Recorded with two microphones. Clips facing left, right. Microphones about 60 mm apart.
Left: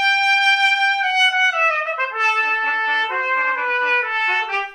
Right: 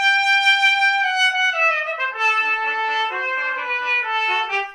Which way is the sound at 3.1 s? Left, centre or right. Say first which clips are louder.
Left 4 dB; left.